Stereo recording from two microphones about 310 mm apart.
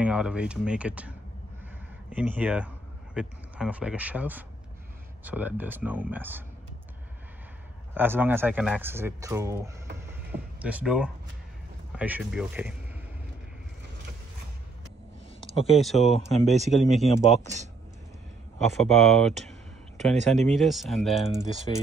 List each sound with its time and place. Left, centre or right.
0.0 s speech: centre
7.9 s speech: centre
10.1 s a sound: centre
11.9 s speech: centre
15.5 s speech: centre
15.8 s speech: centre
18.7 s speech: centre
20.2 s speech: right
20.5 s speech: centre